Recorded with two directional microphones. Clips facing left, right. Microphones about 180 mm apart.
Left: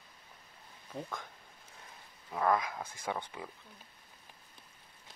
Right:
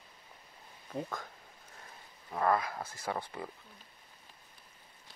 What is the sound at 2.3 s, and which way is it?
Speech, centre (ahead or behind).